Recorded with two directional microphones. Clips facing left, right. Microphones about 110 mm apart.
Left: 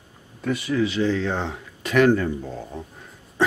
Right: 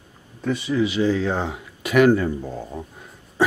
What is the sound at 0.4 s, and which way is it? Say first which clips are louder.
Speech: right 1 dB; centre (ahead or behind).